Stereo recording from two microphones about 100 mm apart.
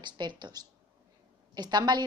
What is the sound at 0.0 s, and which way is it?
A woman's voice, 50° right (ahead or behind).